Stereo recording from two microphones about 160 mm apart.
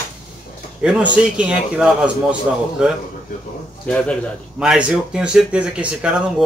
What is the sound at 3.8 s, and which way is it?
Speech, 10° left (ahead or behind).